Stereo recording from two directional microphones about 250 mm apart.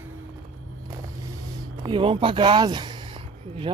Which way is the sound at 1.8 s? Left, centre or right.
Centre.